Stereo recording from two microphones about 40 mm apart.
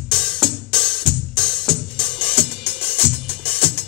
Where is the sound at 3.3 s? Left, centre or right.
Left.